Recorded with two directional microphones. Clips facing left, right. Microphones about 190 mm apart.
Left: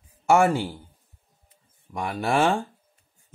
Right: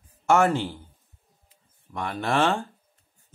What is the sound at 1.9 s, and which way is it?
Mantra, 10° left (ahead or behind).